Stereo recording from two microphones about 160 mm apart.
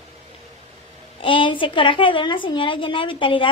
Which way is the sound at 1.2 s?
30° left (ahead or behind).